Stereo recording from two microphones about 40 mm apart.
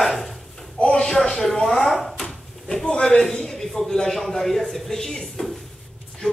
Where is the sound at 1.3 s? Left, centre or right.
Centre.